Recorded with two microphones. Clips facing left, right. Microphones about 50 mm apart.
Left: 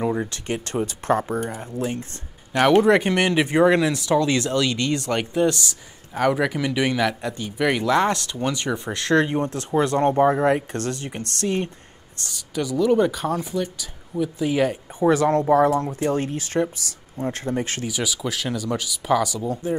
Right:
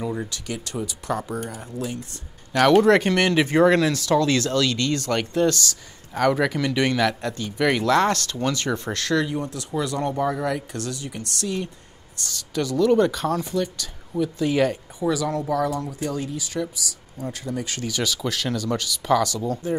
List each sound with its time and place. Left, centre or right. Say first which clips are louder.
0.0 s speech: left 4 dB; left
0.3 s speech: left 4 dB; left
2.5 s speech: even; centre
9.1 s speech: left 5 dB; left
12.3 s speech: even; centre
15.0 s speech: left 7 dB; left
17.8 s speech: even; centre